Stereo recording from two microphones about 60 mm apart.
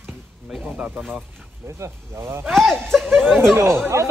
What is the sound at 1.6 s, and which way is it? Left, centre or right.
Speech, right.